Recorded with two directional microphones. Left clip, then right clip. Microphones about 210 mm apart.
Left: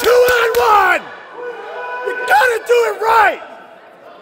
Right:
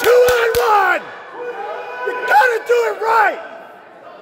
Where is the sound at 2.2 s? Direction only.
20° left (ahead or behind).